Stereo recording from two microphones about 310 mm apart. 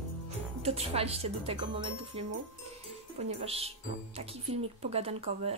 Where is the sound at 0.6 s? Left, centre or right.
Centre.